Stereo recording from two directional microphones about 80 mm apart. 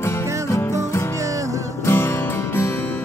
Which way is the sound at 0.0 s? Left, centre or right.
Left.